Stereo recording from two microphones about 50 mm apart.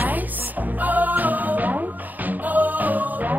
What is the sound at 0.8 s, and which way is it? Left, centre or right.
Music, right.